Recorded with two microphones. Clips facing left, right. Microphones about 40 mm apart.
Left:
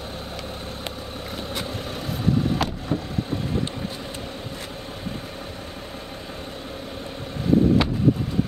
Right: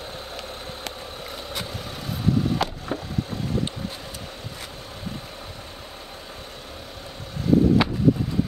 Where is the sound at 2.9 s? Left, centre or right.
Right.